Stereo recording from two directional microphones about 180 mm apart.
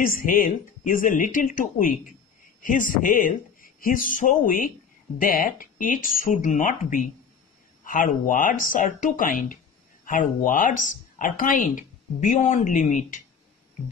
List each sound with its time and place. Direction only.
0.0 s speech: 50° left (ahead or behind)